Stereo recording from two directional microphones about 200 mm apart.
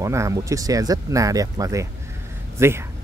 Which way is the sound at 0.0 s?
15° right (ahead or behind).